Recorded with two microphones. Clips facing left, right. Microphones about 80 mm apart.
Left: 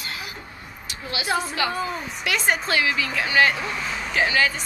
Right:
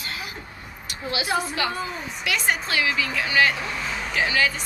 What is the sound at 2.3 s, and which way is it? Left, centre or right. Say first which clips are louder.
A woman's voice: left 2 dB; left.